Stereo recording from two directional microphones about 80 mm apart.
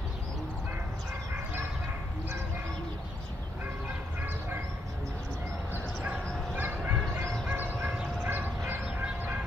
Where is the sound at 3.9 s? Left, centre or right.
Right.